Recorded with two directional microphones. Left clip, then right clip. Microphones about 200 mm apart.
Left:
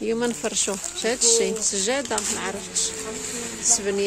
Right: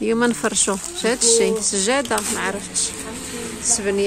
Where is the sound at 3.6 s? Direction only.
10° left (ahead or behind).